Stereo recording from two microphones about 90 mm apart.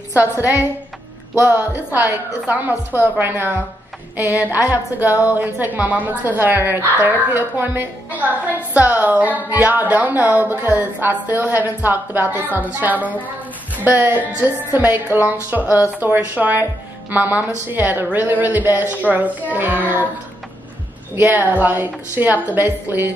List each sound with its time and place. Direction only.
0.1 s a woman's voice: 20° right (ahead or behind)
21.2 s a woman's voice: 20° right (ahead or behind)